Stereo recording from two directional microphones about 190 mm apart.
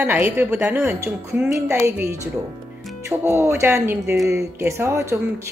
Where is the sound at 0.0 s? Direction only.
10° right (ahead or behind).